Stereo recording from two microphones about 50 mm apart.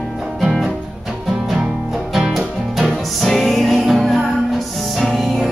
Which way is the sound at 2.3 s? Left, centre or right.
Centre.